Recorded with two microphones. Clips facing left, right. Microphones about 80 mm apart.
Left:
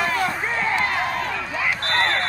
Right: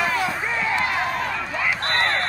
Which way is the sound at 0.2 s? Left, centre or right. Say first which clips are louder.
Left 1 dB; left.